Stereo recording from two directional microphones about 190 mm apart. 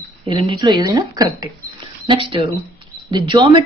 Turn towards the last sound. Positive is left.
turn(degrees=-25)  # may be behind; listen again after turning